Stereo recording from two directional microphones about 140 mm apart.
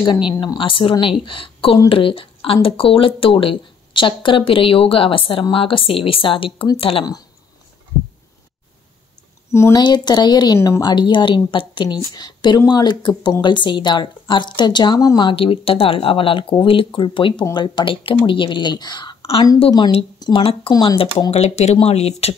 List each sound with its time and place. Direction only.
0.0 s speech: 30° left (ahead or behind)
9.5 s speech: 20° left (ahead or behind); by 19.4 s 35° left (ahead or behind)
20.2 s a sound: 30° left (ahead or behind)
20.7 s speech: 25° left (ahead or behind)
21.3 s speech: 50° left (ahead or behind)